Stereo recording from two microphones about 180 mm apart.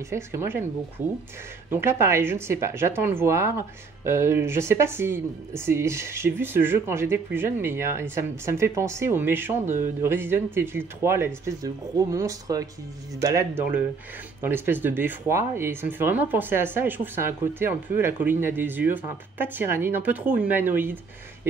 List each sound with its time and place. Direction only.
0.1 s speech: 15° right (ahead or behind)